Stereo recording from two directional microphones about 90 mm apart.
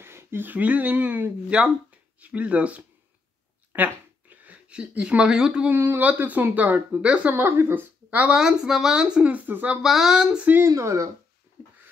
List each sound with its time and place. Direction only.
0.0 s speech: 30° right (ahead or behind); by 5.7 s 10° right (ahead or behind)
5.7 s speech: 25° right (ahead or behind)
8.4 s speech: 5° right (ahead or behind)
9.8 s speech: 5° right (ahead or behind)
10.7 s speech: 35° right (ahead or behind)